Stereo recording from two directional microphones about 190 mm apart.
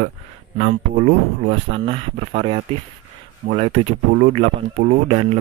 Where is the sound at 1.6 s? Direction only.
30° right (ahead or behind).